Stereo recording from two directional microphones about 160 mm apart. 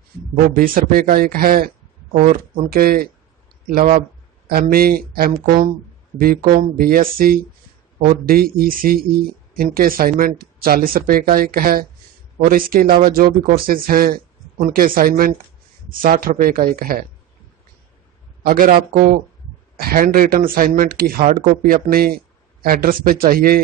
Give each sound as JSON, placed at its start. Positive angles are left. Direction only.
{"t": 0.6, "sound": "speech", "side_deg": -65}
{"t": 4.5, "sound": "speech", "side_deg": -70}
{"t": 18.4, "sound": "a man's voice", "side_deg": -65}
{"t": 19.8, "sound": "speech", "side_deg": -65}